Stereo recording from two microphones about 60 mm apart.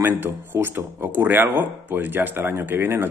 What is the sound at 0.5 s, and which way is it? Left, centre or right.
Speech, right.